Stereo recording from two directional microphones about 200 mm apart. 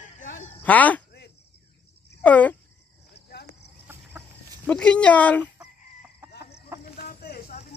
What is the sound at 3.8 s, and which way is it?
Chicken, 10° right (ahead or behind).